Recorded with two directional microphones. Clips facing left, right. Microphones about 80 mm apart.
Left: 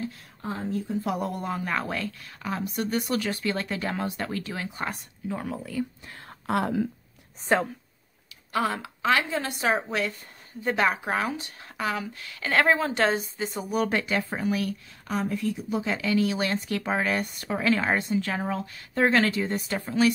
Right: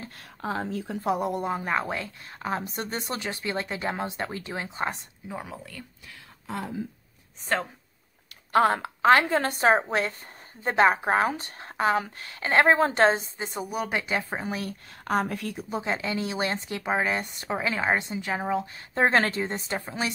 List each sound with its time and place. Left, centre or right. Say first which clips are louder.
0.4 s speech: even; right
1.0 s a woman's voice: right 3 dB; right
5.3 s speech: left 5 dB; centre
6.4 s a woman's voice: left 7 dB; left
8.5 s a woman's voice: right 6 dB; right
13.7 s a woman's voice: left 4 dB; centre; by 14.8 s right
15.0 s speech: right 1 dB; right
15.7 s a woman's voice: left 2 dB; right
19.0 s a woman's voice: left 1 dB; right